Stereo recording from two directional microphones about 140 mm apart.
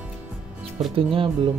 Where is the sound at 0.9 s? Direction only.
40° right (ahead or behind).